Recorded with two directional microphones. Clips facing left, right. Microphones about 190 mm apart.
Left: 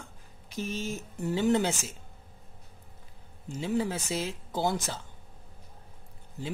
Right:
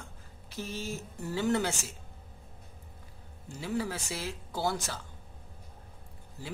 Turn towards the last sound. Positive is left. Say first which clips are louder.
# left 6 dB
turn(degrees=20)  # may be behind; listen again after turning